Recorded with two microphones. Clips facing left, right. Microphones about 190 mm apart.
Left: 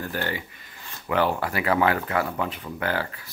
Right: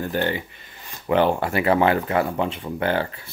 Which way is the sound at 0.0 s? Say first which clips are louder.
Right 6 dB; 20° right (ahead or behind).